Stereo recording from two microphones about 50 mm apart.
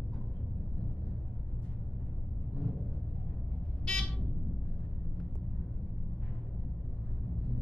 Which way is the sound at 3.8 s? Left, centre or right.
Centre.